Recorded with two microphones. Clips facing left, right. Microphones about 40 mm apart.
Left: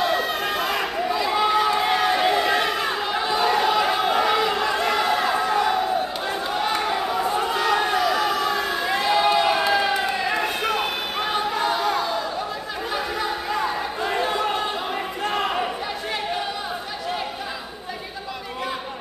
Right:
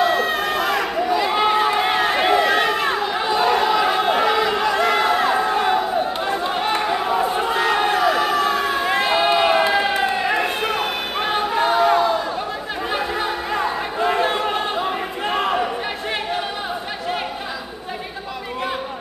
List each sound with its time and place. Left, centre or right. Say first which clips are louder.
0.0 s crowd: right 4 dB; right
1.1 s run: right 3 dB; right
2.6 s chatter: right 4 dB; right
4.7 s a sound: right 4 dB; right
6.2 s run: right 3 dB; right
7.2 s crowd: right 3 dB; right
11.1 s a sound: right 4 dB; right
12.9 s chatter: right 3 dB; right